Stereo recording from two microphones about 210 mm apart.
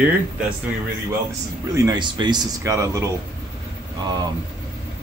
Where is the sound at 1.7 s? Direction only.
20° right (ahead or behind).